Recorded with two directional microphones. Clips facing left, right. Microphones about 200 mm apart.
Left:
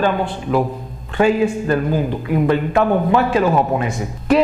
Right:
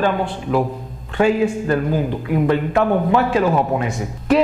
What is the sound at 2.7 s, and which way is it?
A man's voice, 20° left (ahead or behind).